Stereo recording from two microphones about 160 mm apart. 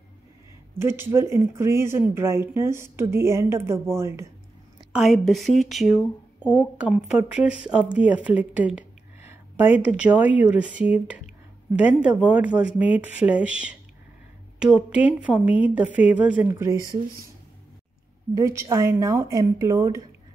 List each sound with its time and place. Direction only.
0.7 s speech: 15° right (ahead or behind)
4.9 s a woman's voice: centre (ahead or behind)
18.3 s speech: 20° right (ahead or behind)